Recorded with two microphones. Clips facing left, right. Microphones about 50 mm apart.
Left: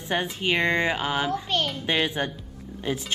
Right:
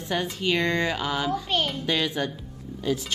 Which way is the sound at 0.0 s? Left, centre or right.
Left.